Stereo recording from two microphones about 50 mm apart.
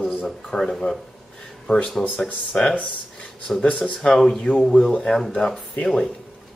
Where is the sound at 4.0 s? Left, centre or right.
Centre.